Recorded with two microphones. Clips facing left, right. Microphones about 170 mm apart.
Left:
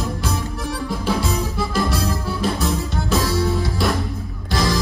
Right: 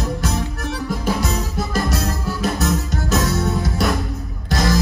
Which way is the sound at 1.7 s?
45° right (ahead or behind).